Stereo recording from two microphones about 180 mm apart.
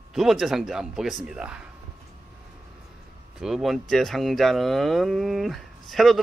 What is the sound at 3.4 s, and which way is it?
Speech, centre (ahead or behind).